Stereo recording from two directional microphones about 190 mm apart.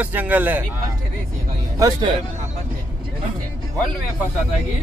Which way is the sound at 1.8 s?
20° right (ahead or behind).